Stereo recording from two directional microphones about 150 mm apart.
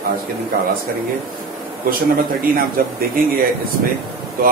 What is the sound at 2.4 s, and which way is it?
Speech, 75° right (ahead or behind).